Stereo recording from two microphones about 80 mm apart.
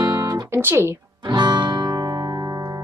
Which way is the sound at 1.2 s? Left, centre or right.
Right.